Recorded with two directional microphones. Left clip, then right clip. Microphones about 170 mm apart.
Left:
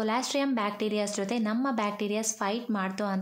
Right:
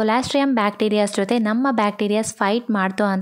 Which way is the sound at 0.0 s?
45° right (ahead or behind).